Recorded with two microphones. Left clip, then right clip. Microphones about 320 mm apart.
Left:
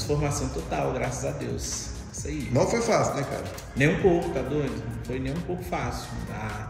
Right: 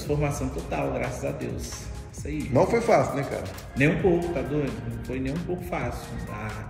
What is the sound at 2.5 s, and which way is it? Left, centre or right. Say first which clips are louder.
Speech: right 3 dB; right.